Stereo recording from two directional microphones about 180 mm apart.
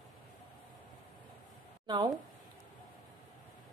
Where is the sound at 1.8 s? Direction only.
25° right (ahead or behind).